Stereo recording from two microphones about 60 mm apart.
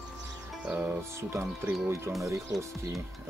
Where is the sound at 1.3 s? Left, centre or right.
Right.